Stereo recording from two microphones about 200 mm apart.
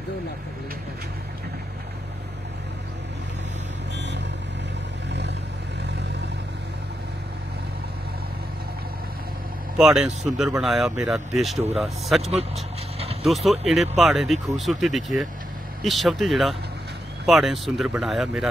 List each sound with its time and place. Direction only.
3.9 s vehicle: 60° right (ahead or behind)
9.8 s speech: 5° right (ahead or behind)